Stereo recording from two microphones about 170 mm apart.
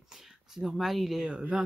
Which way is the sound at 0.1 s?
Centre (ahead or behind).